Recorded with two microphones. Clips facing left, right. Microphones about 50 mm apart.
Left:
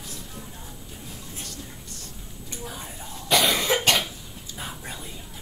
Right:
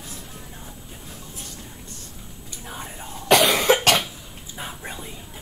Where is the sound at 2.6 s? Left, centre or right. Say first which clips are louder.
Right 4 dB; right.